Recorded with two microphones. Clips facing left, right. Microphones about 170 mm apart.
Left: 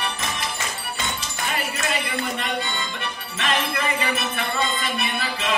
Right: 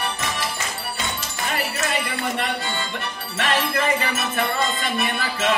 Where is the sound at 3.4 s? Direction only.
45° right (ahead or behind).